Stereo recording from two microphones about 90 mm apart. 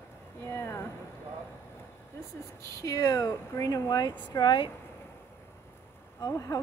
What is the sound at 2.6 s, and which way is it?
A woman's voice, 35° left (ahead or behind).